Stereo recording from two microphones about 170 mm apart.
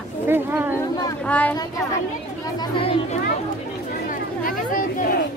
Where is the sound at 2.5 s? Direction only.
25° left (ahead or behind).